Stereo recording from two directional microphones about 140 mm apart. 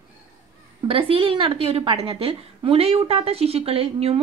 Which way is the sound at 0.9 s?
40° right (ahead or behind).